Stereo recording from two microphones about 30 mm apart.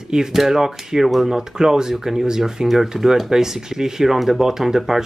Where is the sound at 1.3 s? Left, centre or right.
Right.